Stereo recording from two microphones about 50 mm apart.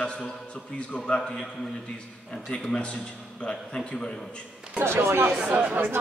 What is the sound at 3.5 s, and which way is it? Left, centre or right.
Speech, centre.